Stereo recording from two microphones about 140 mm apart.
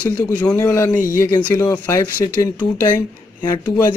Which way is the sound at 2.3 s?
10° left (ahead or behind).